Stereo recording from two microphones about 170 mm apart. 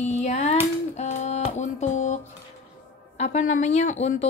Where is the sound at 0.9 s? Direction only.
40° left (ahead or behind).